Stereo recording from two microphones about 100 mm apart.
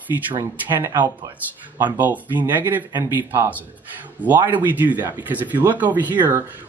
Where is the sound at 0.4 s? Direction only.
25° right (ahead or behind).